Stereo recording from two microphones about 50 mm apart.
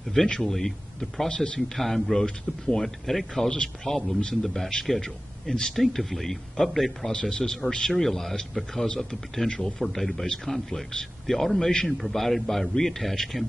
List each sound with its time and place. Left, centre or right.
0.4 s speech: centre
1.3 s speech: centre
1.8 s speech: centre
7.1 s speech: centre